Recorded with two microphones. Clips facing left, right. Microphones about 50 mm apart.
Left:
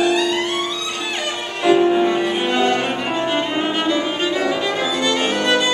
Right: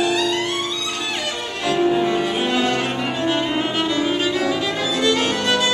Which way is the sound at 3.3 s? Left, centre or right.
Centre.